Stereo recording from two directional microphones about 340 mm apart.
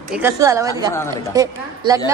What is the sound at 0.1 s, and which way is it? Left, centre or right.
A woman's voice, centre.